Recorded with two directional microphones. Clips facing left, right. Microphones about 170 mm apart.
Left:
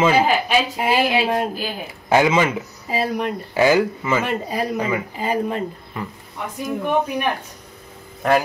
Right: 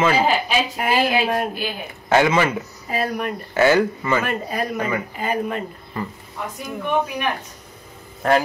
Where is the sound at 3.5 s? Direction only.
10° left (ahead or behind).